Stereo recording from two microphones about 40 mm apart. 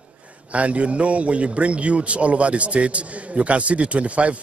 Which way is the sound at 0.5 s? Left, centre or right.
Right.